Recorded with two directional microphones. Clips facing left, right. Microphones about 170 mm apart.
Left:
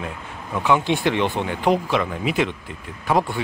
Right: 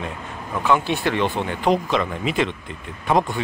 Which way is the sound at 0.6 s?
15° left (ahead or behind).